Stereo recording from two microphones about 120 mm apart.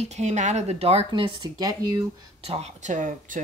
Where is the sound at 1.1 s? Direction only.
40° right (ahead or behind).